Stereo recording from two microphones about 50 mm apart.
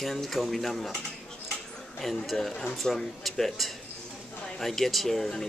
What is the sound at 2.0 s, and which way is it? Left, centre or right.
Speech, centre.